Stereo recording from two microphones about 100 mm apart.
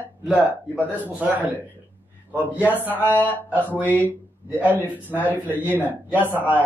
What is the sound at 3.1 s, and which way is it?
Speech, 20° left (ahead or behind).